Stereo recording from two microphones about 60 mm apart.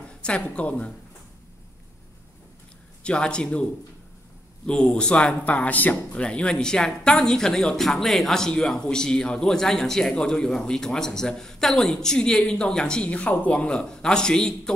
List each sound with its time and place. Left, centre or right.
0.1 s speech: centre
3.0 s speech: centre
4.6 s speech: centre